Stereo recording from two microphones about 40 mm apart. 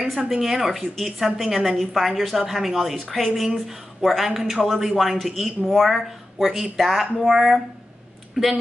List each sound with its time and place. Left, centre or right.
0.1 s a woman's voice: centre